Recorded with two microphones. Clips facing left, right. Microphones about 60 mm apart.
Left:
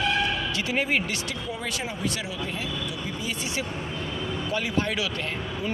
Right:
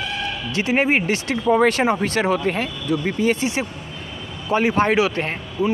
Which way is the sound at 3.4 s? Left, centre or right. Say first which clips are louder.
Right 6 dB; right.